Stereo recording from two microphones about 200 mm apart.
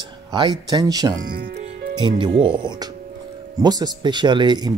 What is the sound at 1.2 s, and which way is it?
Speech, 50° right (ahead or behind).